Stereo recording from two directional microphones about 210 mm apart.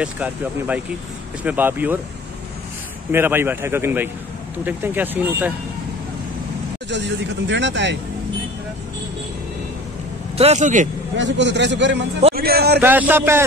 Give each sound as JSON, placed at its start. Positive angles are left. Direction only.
{"t": 0.0, "sound": "a man's voice", "side_deg": -5}
{"t": 3.1, "sound": "a man's voice", "side_deg": -10}
{"t": 6.9, "sound": "speech", "side_deg": -60}
{"t": 10.3, "sound": "a man's voice", "side_deg": -30}
{"t": 11.1, "sound": "a man's voice", "side_deg": -60}
{"t": 12.8, "sound": "a man's voice", "side_deg": -10}